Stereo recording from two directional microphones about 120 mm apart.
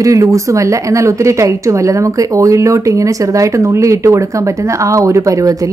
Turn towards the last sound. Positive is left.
turn(degrees=-25)  # may be behind; listen again after turning